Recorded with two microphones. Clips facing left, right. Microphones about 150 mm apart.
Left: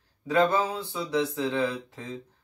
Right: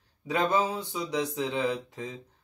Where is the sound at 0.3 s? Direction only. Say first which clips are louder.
Left 3 dB; 20° right (ahead or behind).